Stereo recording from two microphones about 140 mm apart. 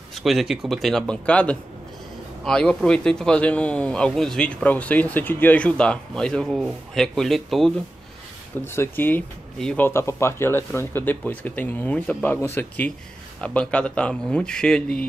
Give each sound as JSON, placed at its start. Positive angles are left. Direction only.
{"t": 0.1, "sound": "speech", "side_deg": 0}
{"t": 8.6, "sound": "speech", "side_deg": 15}
{"t": 9.8, "sound": "speech", "side_deg": 20}